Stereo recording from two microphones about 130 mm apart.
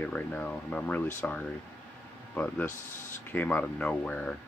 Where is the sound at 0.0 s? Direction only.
10° left (ahead or behind).